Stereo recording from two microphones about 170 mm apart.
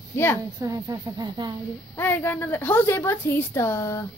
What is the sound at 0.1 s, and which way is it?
Speech, 15° left (ahead or behind).